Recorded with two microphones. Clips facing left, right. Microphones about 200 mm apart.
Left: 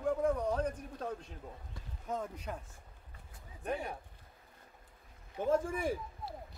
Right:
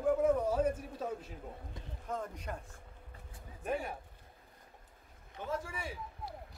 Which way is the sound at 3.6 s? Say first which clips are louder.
Right 1 dB; 5° right (ahead or behind).